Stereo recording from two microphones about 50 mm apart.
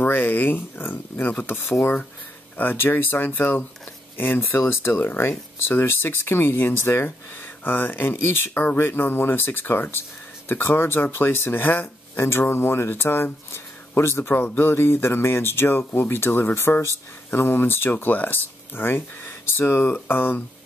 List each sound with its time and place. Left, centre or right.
0.0 s speech: left
12.2 s speech: left
14.3 s speech: left